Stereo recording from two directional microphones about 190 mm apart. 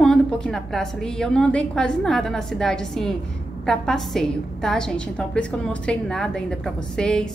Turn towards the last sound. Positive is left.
turn(degrees=5)  # may be behind; listen again after turning